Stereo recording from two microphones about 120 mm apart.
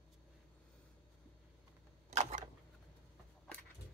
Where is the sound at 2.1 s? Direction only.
75° right (ahead or behind).